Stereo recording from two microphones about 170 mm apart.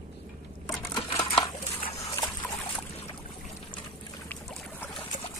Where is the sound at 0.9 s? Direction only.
20° left (ahead or behind).